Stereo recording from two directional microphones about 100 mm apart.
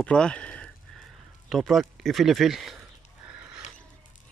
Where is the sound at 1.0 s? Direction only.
Centre (ahead or behind).